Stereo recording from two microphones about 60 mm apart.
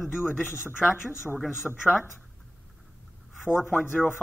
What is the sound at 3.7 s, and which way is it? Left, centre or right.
Speech, left.